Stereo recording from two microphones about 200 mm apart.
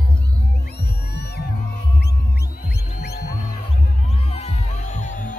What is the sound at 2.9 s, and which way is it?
Music, 50° left (ahead or behind).